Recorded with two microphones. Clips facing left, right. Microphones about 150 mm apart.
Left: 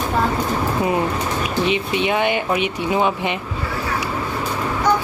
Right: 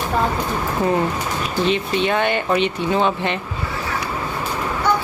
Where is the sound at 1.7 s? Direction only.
15° left (ahead or behind).